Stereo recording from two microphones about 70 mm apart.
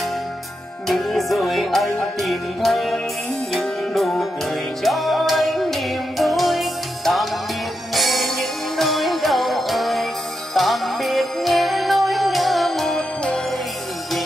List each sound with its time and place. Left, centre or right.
0.8 s music: centre